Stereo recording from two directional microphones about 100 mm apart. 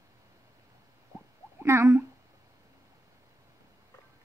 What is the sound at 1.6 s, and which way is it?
Speech, 25° right (ahead or behind).